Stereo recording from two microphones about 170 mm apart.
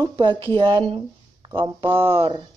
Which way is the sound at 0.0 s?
25° right (ahead or behind).